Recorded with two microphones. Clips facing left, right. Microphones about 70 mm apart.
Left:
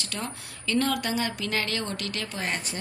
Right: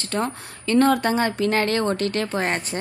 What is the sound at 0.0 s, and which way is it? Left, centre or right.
Speech, right.